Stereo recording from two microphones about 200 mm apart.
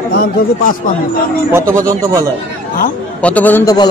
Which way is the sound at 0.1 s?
50° left (ahead or behind).